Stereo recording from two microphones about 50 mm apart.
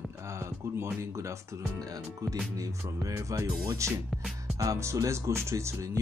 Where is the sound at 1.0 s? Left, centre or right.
Right.